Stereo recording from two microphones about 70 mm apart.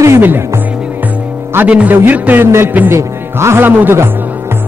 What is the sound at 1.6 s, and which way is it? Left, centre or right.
Speech, right.